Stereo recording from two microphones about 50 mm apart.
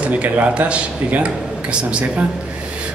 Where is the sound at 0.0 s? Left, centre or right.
Right.